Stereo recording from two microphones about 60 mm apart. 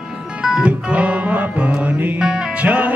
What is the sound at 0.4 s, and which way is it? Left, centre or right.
Music, centre.